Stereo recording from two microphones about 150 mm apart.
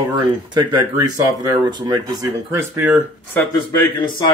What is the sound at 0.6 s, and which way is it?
Speech, 30° right (ahead or behind).